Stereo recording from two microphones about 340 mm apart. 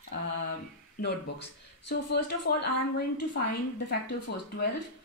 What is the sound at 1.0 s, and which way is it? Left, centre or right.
A woman's voice, left.